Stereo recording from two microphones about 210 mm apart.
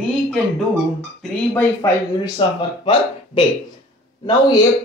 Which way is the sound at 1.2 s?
10° left (ahead or behind).